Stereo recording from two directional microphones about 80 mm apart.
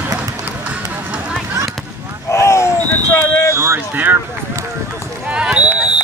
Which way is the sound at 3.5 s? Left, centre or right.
Right.